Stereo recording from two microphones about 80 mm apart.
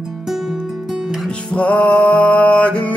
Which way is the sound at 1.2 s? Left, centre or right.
Centre.